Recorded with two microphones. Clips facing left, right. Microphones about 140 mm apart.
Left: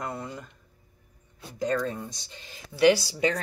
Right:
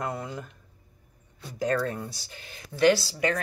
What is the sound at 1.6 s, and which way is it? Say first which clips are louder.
Speech: right 1 dB; 5° right (ahead or behind).